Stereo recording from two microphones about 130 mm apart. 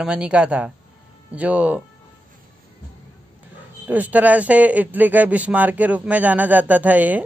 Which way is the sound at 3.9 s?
10° right (ahead or behind).